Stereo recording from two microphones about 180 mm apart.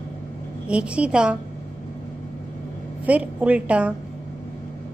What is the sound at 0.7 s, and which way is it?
Speech, 5° right (ahead or behind).